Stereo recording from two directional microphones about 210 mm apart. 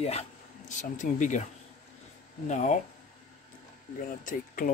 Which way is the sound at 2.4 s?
35° left (ahead or behind).